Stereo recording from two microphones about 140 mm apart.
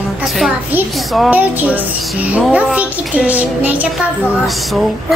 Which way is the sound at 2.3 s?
10° right (ahead or behind).